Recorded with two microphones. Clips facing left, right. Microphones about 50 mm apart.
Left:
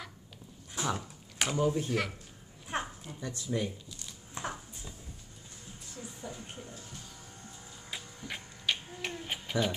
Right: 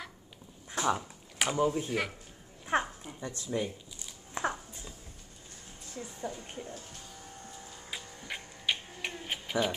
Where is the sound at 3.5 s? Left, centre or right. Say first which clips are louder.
Even; centre.